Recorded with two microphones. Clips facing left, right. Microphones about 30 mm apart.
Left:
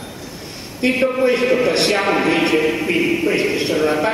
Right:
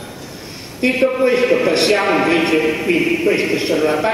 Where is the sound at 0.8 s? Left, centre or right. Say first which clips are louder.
Right 1 dB; centre.